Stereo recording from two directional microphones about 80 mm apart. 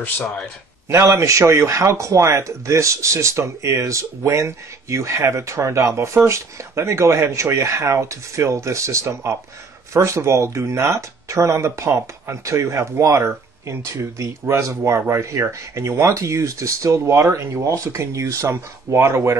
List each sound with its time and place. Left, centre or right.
0.8 s a man's voice: right